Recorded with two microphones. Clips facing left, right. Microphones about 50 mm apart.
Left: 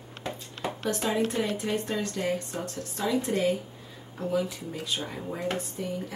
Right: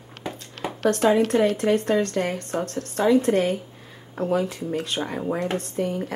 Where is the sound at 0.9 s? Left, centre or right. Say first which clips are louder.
Right 10 dB; right.